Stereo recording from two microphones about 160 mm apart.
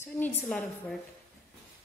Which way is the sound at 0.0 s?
15° left (ahead or behind).